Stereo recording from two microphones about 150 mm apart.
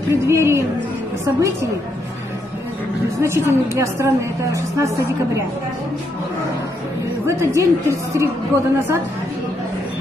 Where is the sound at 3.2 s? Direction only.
20° right (ahead or behind).